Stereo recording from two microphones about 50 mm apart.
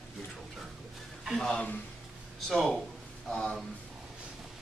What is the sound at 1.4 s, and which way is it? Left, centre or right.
Speech, centre.